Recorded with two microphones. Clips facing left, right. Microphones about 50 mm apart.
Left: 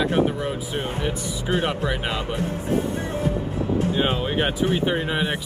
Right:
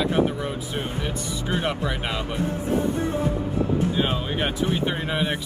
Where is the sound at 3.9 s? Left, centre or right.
Centre.